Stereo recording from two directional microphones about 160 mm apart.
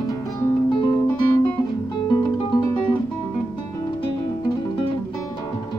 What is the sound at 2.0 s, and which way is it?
Guitar, 25° left (ahead or behind).